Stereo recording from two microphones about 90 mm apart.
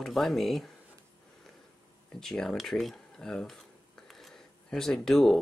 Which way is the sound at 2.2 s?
5° left (ahead or behind).